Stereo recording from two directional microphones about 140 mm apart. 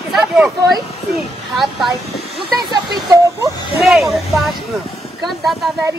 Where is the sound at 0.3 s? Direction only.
Centre (ahead or behind).